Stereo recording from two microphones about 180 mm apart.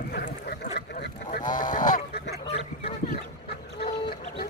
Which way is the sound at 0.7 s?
65° left (ahead or behind).